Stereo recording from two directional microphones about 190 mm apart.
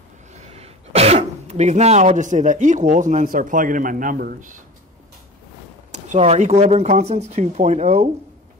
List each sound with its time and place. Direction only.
0.3 s speech: 35° right (ahead or behind)
5.9 s speech: 35° right (ahead or behind)